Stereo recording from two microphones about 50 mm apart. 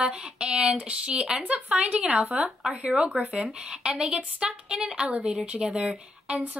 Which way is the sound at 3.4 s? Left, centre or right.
Centre.